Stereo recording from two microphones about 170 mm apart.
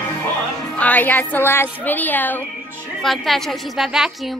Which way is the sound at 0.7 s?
10° left (ahead or behind).